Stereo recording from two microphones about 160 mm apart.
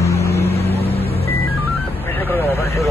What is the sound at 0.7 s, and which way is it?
Vehicle, 40° left (ahead or behind).